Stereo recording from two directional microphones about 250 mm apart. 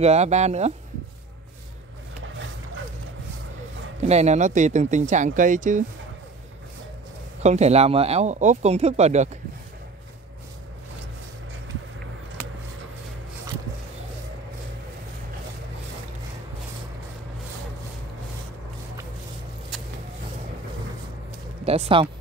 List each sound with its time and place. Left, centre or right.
0.0 s speech: right
4.0 s speech: right
7.4 s speech: right
21.6 s speech: right